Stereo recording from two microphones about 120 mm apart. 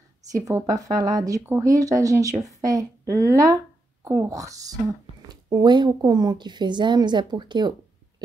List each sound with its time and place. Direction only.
0.2 s speech: 30° right (ahead or behind)